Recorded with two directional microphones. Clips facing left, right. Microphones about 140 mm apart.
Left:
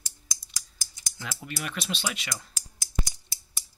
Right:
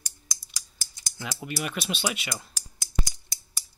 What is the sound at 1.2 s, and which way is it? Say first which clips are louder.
Speech: right 4 dB; 10° right (ahead or behind).